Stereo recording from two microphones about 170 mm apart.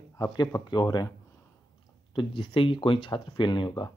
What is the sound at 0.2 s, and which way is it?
Speech, 20° left (ahead or behind).